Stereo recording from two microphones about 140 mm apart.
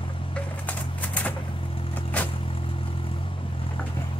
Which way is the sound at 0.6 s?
10° left (ahead or behind).